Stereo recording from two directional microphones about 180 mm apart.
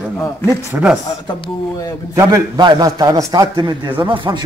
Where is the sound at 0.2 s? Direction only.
15° left (ahead or behind).